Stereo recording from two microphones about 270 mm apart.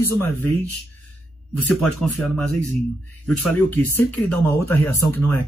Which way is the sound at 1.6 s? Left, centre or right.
Centre.